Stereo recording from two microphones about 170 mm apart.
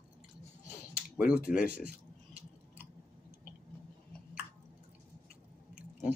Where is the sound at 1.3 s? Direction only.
55° left (ahead or behind).